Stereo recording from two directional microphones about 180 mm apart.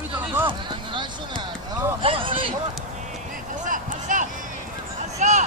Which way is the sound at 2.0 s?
30° right (ahead or behind).